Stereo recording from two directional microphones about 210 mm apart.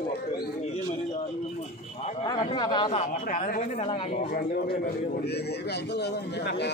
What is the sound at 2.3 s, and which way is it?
Speech, 20° left (ahead or behind).